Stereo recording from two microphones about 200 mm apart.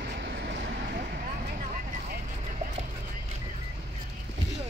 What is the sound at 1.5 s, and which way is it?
Vehicle, 40° right (ahead or behind).